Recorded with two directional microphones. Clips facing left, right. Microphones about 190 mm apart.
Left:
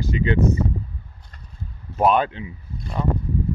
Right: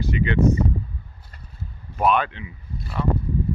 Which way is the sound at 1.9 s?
30° left (ahead or behind).